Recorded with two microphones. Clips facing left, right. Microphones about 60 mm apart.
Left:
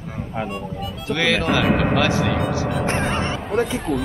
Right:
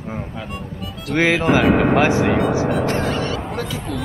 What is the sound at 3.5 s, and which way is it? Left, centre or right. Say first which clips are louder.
Speech: left 5 dB; centre.